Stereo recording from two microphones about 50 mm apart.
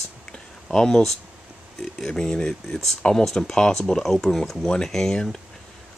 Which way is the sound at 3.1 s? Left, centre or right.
Centre.